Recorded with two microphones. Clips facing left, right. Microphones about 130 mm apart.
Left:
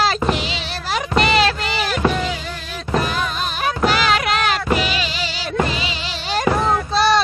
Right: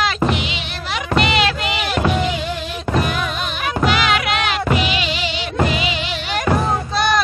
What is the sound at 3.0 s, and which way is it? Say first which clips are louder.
Music: even; 35° left (ahead or behind).